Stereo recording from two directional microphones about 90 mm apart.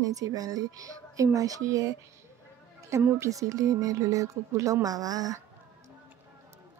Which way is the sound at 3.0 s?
35° right (ahead or behind).